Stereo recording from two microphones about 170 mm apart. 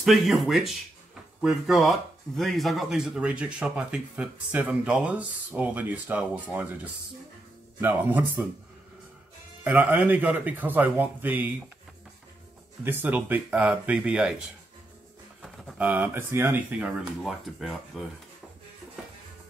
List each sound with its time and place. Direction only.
0.0 s speech: centre (ahead or behind)
9.6 s speech: 10° right (ahead or behind)
12.8 s speech: 10° right (ahead or behind)